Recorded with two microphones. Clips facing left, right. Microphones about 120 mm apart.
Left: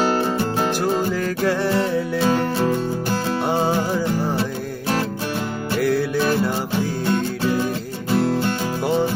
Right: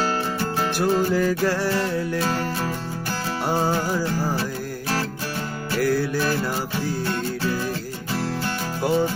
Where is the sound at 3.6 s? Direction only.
20° left (ahead or behind).